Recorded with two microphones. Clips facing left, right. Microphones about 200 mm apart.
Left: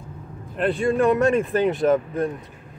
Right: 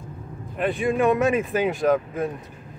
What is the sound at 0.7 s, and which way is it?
Speech, 15° right (ahead or behind).